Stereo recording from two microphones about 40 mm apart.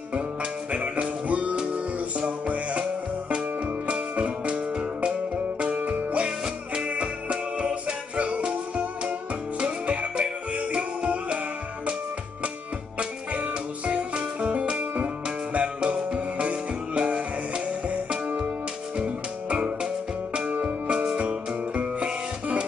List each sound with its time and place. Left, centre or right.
0.1 s music: right
6.2 s music: centre
8.5 s music: centre
9.7 s music: right
13.3 s music: right
19.5 s music: right